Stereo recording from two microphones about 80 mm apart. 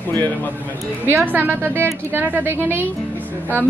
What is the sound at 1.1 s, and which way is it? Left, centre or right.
A woman's voice, right.